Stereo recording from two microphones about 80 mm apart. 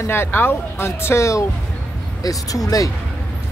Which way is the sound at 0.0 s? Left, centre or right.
Left.